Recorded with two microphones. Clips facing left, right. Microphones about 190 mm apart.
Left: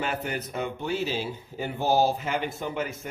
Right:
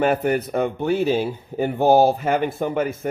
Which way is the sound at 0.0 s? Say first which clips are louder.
Right 11 dB; 55° right (ahead or behind).